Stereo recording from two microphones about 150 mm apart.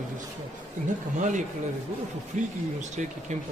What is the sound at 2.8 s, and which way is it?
Speech, 50° right (ahead or behind).